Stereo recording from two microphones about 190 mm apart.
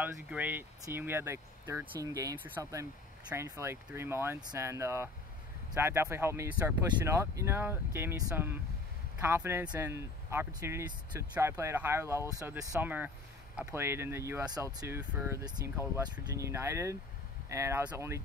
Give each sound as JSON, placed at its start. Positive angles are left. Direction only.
{"t": 0.0, "sound": "speech", "side_deg": -10}